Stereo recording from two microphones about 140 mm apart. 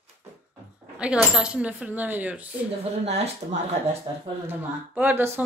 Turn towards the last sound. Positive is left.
turn(degrees=-10)  # may be behind; listen again after turning